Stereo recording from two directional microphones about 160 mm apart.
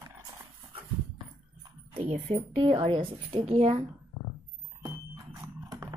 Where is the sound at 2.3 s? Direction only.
35° right (ahead or behind).